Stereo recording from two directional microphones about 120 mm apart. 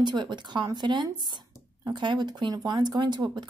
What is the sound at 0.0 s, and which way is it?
Speech, 40° right (ahead or behind).